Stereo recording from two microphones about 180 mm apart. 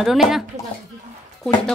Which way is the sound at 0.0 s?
Centre (ahead or behind).